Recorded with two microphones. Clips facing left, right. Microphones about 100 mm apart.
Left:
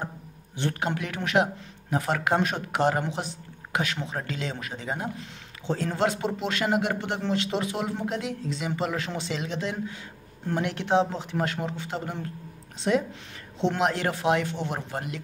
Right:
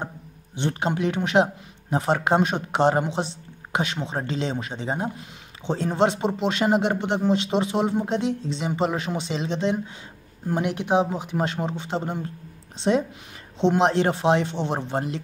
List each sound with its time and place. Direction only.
0.6 s speech: 20° right (ahead or behind)